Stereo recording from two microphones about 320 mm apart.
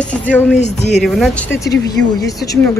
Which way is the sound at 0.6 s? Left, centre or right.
Left.